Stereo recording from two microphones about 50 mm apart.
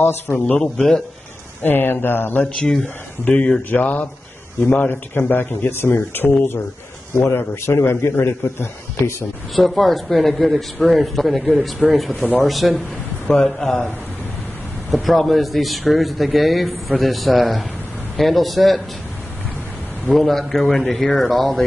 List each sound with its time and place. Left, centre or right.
0.5 s speech: left
1.6 s speech: left
2.5 s a man's voice: centre
3.7 s speech: left
7.6 s a man's voice: left
9.6 s a man's voice: centre
20.1 s a man's voice: centre